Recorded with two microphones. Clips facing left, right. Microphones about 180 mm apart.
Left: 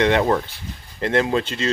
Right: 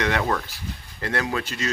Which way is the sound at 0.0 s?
25° left (ahead or behind).